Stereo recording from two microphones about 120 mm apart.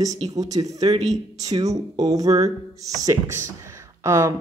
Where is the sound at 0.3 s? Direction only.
35° right (ahead or behind).